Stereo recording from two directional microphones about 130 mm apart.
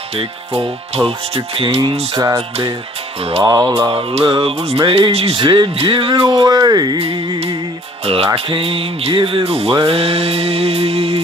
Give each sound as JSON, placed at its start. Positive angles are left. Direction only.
{"t": 0.1, "sound": "speech", "side_deg": -50}
{"t": 2.1, "sound": "music", "side_deg": -25}
{"t": 3.2, "sound": "speech", "side_deg": -50}
{"t": 3.4, "sound": "music", "side_deg": -30}
{"t": 3.9, "sound": "speech", "side_deg": -45}
{"t": 6.4, "sound": "speech", "side_deg": -30}
{"t": 7.0, "sound": "speech", "side_deg": -45}